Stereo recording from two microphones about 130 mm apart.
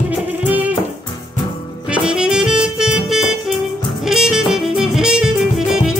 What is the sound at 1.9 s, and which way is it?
Music, 5° right (ahead or behind).